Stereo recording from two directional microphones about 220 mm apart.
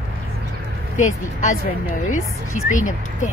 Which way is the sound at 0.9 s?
35° left (ahead or behind).